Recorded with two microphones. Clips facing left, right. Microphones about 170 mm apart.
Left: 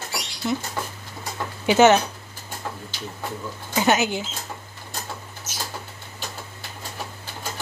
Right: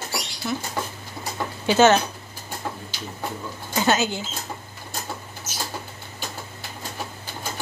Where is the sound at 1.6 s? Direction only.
15° left (ahead or behind).